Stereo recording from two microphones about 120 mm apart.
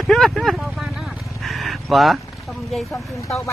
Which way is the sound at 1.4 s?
Centre (ahead or behind).